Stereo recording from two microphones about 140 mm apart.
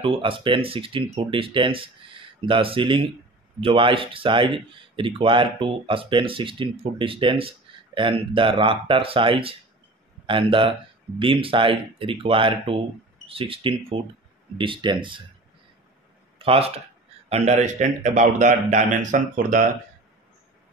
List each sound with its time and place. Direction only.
0.0 s speech: 40° right (ahead or behind)
16.3 s speech: 45° right (ahead or behind); by 19.7 s 65° right (ahead or behind)